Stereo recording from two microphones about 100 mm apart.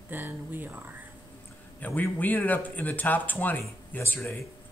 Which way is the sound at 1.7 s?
15° left (ahead or behind).